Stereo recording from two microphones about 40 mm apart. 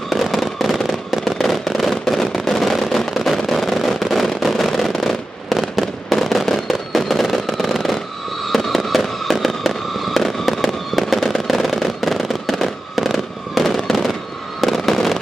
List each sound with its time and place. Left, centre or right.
0.1 s fireworks: centre